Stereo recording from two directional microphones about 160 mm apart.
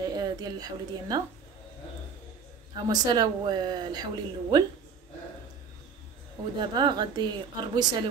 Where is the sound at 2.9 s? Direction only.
25° right (ahead or behind).